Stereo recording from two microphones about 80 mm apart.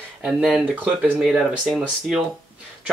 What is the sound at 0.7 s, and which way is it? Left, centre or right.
Speech, right.